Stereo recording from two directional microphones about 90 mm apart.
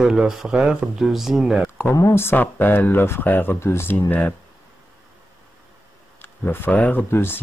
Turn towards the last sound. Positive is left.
turn(degrees=25)  # may be behind; listen again after turning